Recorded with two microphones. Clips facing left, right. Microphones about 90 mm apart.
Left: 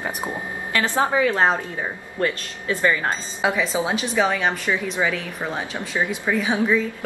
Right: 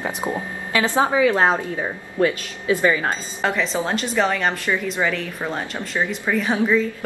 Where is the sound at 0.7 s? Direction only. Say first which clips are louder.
Right 2 dB; 15° right (ahead or behind).